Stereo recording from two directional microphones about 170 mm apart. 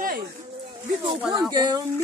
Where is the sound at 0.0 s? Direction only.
65° right (ahead or behind).